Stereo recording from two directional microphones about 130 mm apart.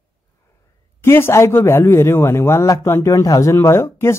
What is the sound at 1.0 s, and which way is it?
A man's voice, 20° left (ahead or behind).